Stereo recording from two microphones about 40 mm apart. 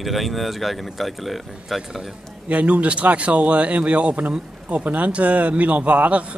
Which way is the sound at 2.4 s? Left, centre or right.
Right.